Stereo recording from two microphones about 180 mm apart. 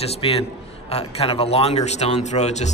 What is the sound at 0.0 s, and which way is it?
A man's voice, 35° left (ahead or behind).